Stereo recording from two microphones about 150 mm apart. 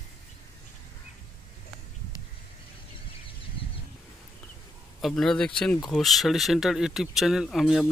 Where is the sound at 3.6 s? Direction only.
35° left (ahead or behind).